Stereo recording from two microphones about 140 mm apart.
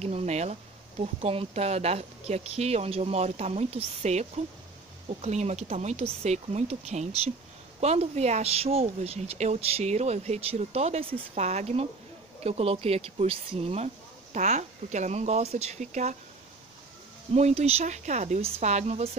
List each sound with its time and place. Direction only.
0.0 s a woman's voice: 50° right (ahead or behind)
17.3 s speech: 50° right (ahead or behind)